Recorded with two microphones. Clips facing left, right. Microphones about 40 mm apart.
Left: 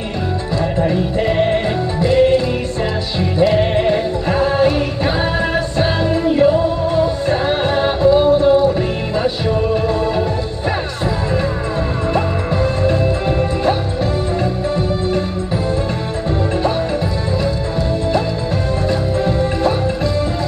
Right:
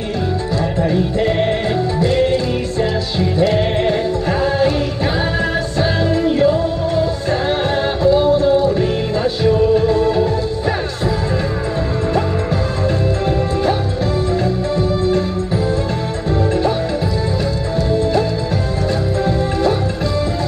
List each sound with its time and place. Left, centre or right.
0.7 s music: left
8.6 s music: left
14.4 s music: left